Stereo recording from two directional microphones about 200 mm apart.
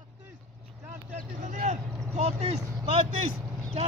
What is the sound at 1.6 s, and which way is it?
Vehicle, 35° right (ahead or behind).